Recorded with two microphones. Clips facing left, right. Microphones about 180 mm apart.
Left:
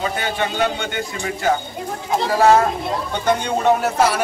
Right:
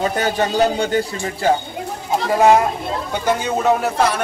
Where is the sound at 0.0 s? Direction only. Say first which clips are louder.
Right 4 dB; 40° right (ahead or behind).